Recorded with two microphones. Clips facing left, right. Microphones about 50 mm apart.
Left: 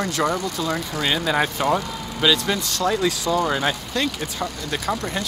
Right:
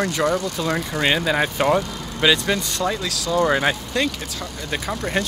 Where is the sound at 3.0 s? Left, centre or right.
Centre.